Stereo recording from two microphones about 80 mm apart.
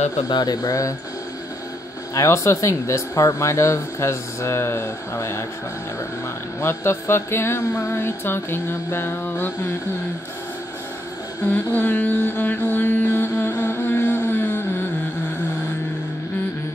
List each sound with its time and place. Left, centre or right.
0.3 s speech: left
2.1 s speech: left
6.6 s speech: left
11.4 s mantra: left